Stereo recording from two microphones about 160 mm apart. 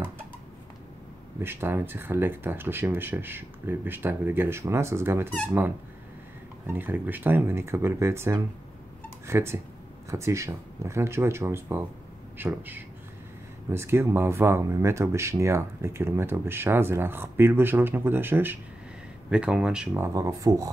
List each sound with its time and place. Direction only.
1.4 s speech: 15° right (ahead or behind)
6.7 s speech: 10° right (ahead or behind)
20.2 s speech: 20° right (ahead or behind)